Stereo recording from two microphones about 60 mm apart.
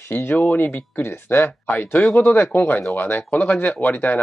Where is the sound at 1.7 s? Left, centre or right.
Left.